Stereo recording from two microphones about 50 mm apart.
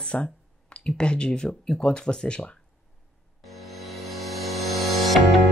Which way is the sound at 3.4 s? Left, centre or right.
Centre.